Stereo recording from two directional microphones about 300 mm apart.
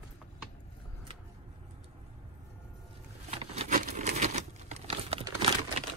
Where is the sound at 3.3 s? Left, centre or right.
Right.